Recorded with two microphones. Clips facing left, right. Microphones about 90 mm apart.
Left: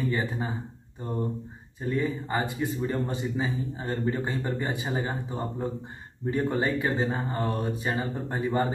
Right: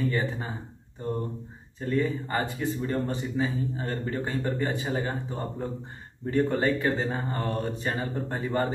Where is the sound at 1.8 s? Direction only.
10° left (ahead or behind).